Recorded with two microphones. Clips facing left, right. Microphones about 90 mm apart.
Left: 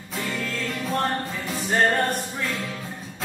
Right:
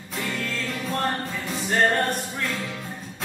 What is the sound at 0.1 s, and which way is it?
Music, centre (ahead or behind).